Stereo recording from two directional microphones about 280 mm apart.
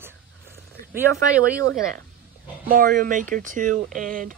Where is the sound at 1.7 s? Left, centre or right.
Right.